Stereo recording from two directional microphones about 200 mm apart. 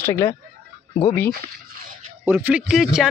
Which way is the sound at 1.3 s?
45° right (ahead or behind).